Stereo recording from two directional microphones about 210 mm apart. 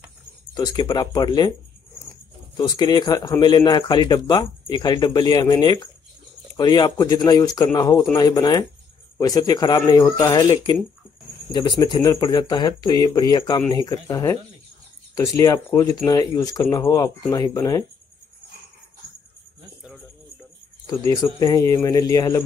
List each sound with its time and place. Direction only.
0.6 s speech: 20° left (ahead or behind)
2.5 s a man's voice: 20° left (ahead or behind)
20.8 s a man's voice: 15° left (ahead or behind)